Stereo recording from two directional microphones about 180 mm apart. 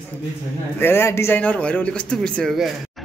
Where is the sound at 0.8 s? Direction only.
15° left (ahead or behind).